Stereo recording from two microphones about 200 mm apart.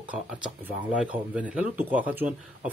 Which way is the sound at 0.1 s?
5° right (ahead or behind).